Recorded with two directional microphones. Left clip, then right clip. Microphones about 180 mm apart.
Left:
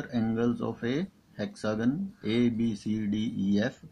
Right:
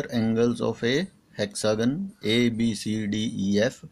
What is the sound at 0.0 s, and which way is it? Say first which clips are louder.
Speech: right 6 dB; 30° right (ahead or behind).